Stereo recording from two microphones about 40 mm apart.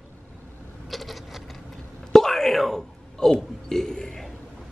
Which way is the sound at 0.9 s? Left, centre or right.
Centre.